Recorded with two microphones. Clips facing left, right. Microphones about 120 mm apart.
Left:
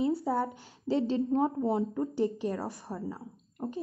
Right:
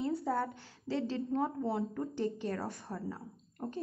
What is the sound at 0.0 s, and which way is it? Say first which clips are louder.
A woman's voice: left 5 dB; 10° left (ahead or behind).